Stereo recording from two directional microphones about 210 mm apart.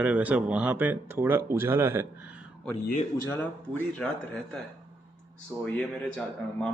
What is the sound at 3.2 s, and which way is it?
Speech, 10° left (ahead or behind).